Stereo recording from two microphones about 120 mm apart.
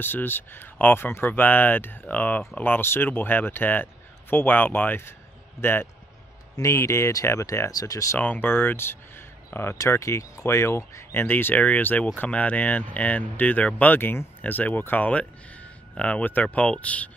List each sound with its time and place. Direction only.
0.0 s speech: 15° left (ahead or behind)
8.2 s speech: 15° left (ahead or behind)